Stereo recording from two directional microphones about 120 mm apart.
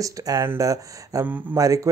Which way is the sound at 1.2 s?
15° right (ahead or behind).